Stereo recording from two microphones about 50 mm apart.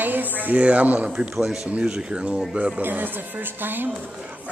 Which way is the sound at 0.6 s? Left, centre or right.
Right.